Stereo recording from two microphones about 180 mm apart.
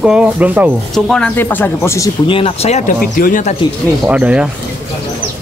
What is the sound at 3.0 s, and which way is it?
Speech, 50° left (ahead or behind).